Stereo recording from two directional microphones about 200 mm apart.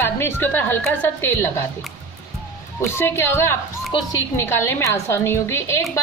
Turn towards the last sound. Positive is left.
turn(degrees=15)  # may be behind; listen again after turning